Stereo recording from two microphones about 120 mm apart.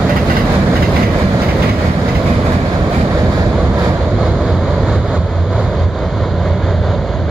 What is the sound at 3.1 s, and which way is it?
Waves, 30° right (ahead or behind).